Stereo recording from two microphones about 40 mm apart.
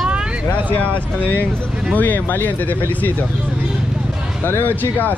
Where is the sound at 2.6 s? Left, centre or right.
Left.